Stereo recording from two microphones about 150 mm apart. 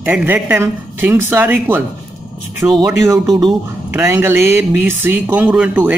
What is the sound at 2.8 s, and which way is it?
Speech, 20° right (ahead or behind).